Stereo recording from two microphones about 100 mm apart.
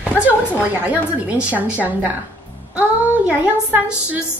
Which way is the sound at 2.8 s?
15° right (ahead or behind).